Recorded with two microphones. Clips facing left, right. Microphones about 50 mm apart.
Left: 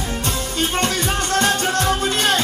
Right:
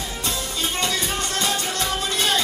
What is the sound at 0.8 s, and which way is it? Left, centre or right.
Music, left.